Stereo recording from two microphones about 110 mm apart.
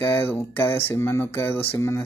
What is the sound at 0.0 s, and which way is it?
Speech, 20° left (ahead or behind).